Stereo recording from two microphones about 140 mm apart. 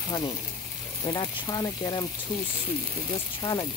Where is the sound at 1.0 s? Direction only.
35° left (ahead or behind).